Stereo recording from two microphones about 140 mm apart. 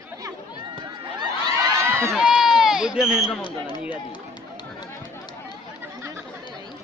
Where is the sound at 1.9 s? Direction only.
20° right (ahead or behind).